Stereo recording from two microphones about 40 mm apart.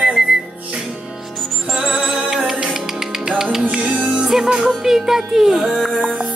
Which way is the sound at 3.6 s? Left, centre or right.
Right.